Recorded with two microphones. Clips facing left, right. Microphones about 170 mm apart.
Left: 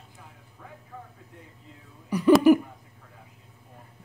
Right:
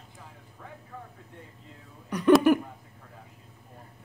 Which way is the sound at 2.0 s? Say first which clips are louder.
Left 2 dB; 10° left (ahead or behind).